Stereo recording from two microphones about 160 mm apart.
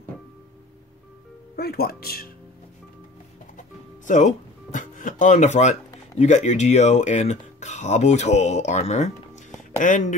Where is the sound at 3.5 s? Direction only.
50° left (ahead or behind).